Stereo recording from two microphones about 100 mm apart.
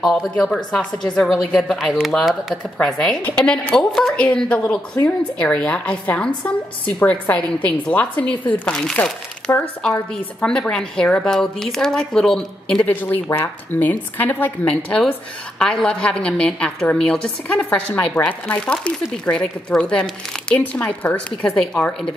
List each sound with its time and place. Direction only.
0.0 s a woman's voice: 10° left (ahead or behind)
9.5 s speech: 30° left (ahead or behind)
10.1 s speech: 10° left (ahead or behind)
12.8 s speech: 20° left (ahead or behind)